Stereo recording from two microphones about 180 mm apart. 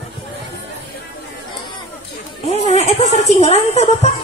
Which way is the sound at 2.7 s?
35° left (ahead or behind).